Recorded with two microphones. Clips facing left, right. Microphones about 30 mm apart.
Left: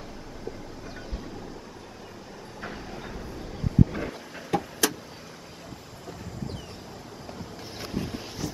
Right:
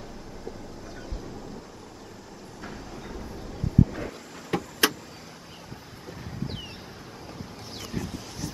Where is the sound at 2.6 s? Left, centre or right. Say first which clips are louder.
Left 2 dB; centre.